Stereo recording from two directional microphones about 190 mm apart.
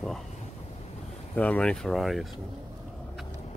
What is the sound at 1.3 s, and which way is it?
Speech, 10° left (ahead or behind).